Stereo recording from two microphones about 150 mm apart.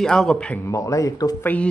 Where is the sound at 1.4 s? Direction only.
10° left (ahead or behind).